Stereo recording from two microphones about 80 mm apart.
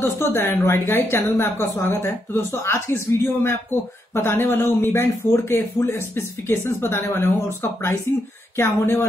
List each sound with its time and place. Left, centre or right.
0.0 s a woman's voice: left